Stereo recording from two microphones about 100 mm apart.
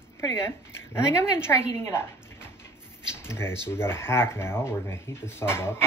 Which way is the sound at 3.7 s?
25° left (ahead or behind).